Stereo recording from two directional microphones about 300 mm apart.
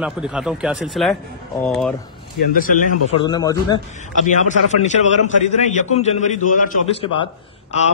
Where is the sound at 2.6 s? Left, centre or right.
Left.